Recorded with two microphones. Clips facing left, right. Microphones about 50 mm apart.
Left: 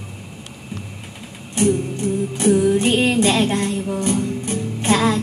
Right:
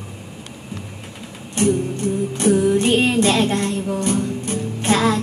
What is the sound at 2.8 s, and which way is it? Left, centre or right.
Music, centre.